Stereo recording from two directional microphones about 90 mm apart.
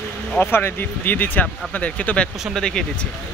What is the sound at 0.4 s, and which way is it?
Speech, 25° left (ahead or behind).